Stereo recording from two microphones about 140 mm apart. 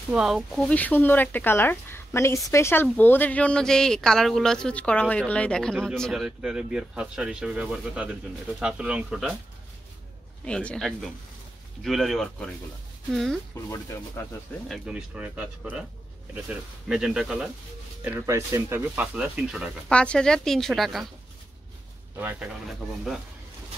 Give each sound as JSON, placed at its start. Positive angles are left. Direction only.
{"t": 0.1, "sound": "speech", "side_deg": -5}
{"t": 0.7, "sound": "a woman's voice", "side_deg": 10}
{"t": 10.4, "sound": "a woman's voice", "side_deg": 5}
{"t": 13.7, "sound": "speech", "side_deg": 20}
{"t": 14.7, "sound": "speech", "side_deg": -5}
{"t": 18.0, "sound": "speech", "side_deg": -15}
{"t": 19.9, "sound": "speech", "side_deg": 5}
{"t": 22.1, "sound": "speech", "side_deg": -15}